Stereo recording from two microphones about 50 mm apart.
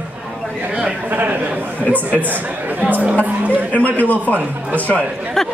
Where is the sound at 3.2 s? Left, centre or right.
Right.